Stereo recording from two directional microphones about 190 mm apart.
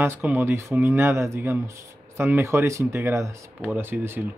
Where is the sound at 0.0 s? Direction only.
10° right (ahead or behind).